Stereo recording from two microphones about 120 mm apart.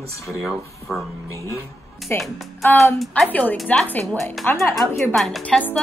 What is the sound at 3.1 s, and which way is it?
Speech, 10° left (ahead or behind).